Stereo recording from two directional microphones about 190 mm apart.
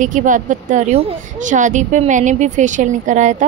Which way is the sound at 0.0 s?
40° right (ahead or behind).